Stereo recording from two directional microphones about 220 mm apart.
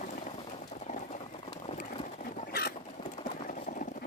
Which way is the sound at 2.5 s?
45° left (ahead or behind).